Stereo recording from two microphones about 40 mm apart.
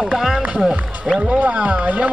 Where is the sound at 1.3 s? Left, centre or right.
Right.